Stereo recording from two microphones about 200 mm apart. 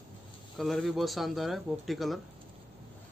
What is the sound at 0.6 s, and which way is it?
Speech, centre (ahead or behind).